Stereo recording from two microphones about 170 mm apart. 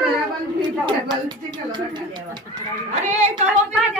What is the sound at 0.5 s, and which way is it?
Speech, 25° right (ahead or behind).